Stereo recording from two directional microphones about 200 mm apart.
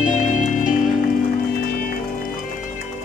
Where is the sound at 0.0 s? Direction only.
40° left (ahead or behind).